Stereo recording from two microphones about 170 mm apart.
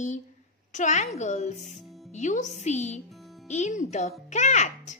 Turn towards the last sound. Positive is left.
turn(degrees=45)  # may be behind; listen again after turning